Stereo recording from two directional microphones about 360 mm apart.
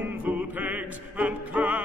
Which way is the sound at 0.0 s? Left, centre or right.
Centre.